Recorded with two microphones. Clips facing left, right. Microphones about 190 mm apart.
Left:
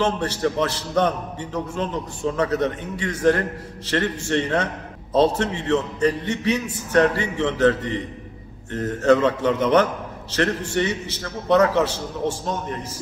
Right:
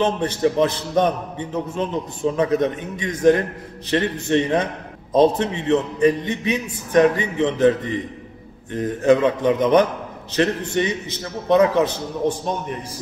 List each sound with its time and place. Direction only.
0.0 s a man's voice: 20° right (ahead or behind)